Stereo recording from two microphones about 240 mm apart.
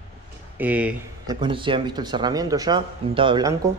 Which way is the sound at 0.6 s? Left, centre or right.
Centre.